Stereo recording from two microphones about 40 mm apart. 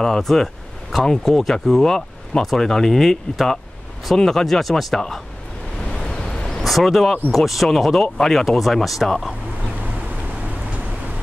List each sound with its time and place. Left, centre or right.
0.0 s speech: centre
5.9 s a sound: centre
6.6 s speech: centre
10.4 s vehicle: right